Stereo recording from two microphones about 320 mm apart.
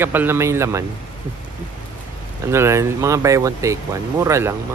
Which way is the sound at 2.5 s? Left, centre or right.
Centre.